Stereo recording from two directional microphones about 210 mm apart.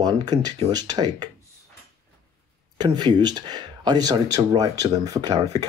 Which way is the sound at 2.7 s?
20° right (ahead or behind).